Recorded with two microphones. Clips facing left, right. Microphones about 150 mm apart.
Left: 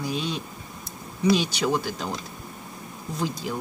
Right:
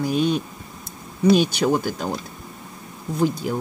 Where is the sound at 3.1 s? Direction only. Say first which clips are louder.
Right 8 dB; 50° right (ahead or behind).